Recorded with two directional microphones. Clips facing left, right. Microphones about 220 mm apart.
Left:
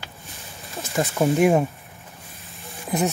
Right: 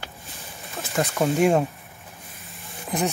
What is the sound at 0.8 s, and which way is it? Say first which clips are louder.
Speech: left 1 dB; centre (ahead or behind).